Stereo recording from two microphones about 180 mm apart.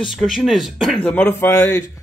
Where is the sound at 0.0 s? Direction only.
Centre (ahead or behind).